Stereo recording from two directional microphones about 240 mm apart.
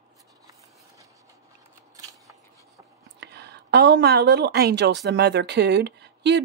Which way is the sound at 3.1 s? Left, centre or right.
Right.